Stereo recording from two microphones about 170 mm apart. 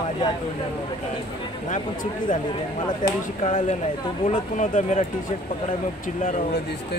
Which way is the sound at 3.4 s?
45° left (ahead or behind).